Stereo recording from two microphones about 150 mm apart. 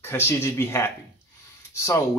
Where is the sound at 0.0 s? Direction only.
15° left (ahead or behind).